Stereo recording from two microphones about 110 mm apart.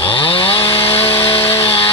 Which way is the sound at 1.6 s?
60° left (ahead or behind).